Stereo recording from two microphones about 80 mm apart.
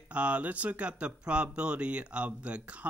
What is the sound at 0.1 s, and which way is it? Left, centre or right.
Speech, centre.